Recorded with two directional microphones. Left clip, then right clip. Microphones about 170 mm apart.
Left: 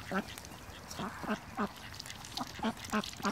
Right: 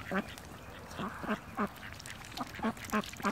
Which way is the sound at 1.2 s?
10° right (ahead or behind).